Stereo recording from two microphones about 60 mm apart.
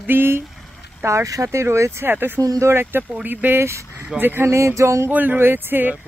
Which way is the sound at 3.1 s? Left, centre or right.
Right.